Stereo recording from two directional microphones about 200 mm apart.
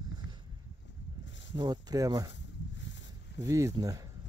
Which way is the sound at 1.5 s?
20° right (ahead or behind).